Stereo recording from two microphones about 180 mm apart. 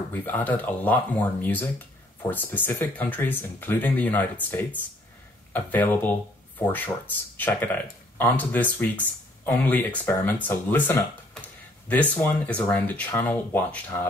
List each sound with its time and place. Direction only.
0.1 s speech: 10° left (ahead or behind)